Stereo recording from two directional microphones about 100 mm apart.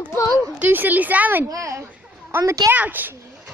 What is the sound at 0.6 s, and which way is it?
Speech, 15° right (ahead or behind).